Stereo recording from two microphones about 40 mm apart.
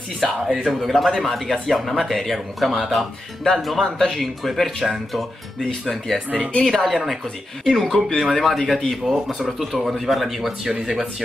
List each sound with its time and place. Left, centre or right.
0.2 s speech: centre
5.9 s speech: centre
10.7 s speech: right